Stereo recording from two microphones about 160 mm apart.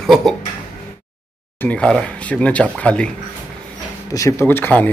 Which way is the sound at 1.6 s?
5° left (ahead or behind).